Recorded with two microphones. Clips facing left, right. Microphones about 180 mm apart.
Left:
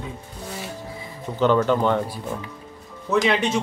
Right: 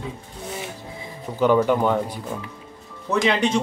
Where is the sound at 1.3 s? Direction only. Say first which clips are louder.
Right 1 dB; 10° right (ahead or behind).